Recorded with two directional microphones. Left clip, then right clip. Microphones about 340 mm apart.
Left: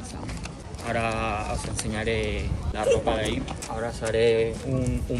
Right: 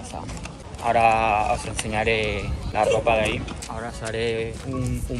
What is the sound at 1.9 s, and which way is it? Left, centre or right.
Speech, right.